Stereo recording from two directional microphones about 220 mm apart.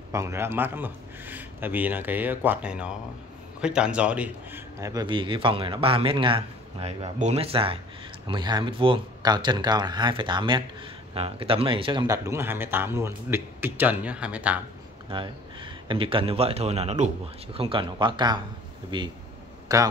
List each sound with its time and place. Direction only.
0.1 s a man's voice: 15° right (ahead or behind)
15.0 s a man's voice: 20° right (ahead or behind)